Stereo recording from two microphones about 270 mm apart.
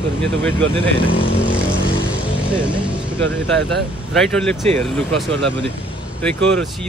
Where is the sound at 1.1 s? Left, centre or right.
Centre.